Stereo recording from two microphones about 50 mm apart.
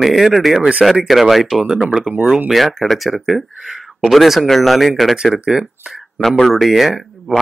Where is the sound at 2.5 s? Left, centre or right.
Centre.